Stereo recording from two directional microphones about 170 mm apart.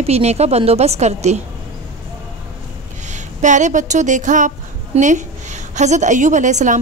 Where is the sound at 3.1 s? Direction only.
45° right (ahead or behind).